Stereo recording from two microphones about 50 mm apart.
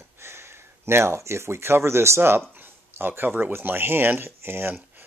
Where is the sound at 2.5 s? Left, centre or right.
Right.